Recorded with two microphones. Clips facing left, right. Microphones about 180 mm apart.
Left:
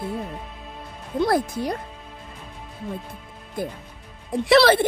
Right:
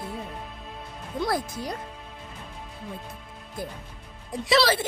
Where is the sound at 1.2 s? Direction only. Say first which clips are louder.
Left 7 dB; 60° left (ahead or behind).